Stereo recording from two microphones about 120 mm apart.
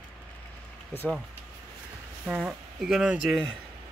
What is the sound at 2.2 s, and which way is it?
Speech, 5° right (ahead or behind).